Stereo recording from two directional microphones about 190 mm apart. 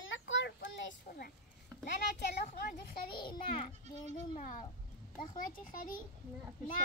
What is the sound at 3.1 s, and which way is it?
Speech, 25° left (ahead or behind).